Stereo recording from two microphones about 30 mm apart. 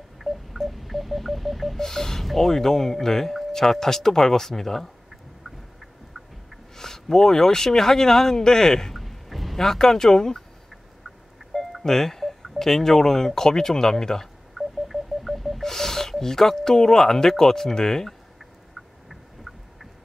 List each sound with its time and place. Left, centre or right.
0.2 s a sound: centre
0.7 s radio: centre
1.8 s speech: centre
6.8 s speech: centre
8.9 s a sound: centre
9.6 s speech: centre
11.8 s speech: centre
14.6 s telephone dialing: centre
15.6 s speech: centre
19.0 s a sound: centre